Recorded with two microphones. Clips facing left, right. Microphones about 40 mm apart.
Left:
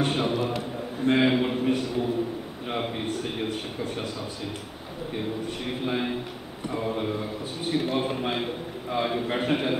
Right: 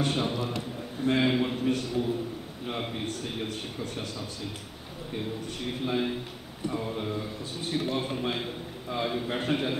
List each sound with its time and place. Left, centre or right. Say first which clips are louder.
0.1 s a man's voice: left 4 dB; centre
5.9 s a man's voice: left 1 dB; centre